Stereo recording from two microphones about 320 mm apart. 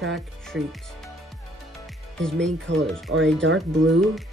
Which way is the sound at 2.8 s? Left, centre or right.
Centre.